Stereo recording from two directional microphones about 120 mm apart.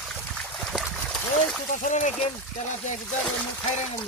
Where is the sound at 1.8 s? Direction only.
85° left.